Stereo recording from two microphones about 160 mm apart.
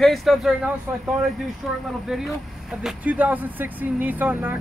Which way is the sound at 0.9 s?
10° right (ahead or behind).